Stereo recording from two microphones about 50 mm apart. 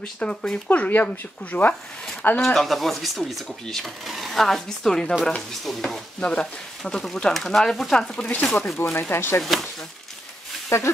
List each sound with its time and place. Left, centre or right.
0.2 s speech: centre
0.7 s speech: left
2.4 s speech: centre
6.1 s stir: left
6.8 s speech: centre
8.2 s stir: left
8.5 s speech: left
9.1 s speech: left
9.4 s a sound: centre
10.7 s speech: left